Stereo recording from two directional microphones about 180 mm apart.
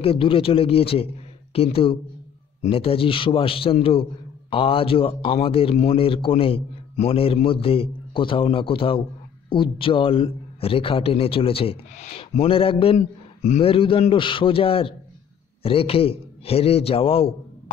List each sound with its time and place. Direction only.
0.0 s a man's voice: 30° left (ahead or behind)